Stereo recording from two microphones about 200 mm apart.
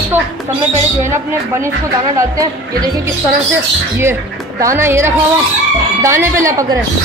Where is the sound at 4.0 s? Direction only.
15° right (ahead or behind).